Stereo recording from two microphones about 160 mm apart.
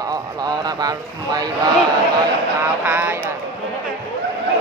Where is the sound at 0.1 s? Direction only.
25° right (ahead or behind).